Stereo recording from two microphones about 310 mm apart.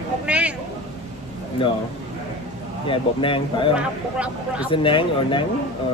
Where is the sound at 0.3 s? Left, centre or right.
Centre.